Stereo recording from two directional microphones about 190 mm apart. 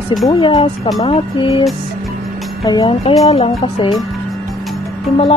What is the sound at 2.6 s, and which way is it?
Speech, 25° left (ahead or behind).